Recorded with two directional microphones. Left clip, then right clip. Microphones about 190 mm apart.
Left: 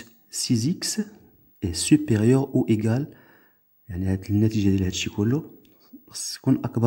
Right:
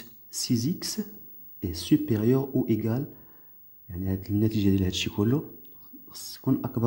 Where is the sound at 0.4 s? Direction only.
20° left (ahead or behind).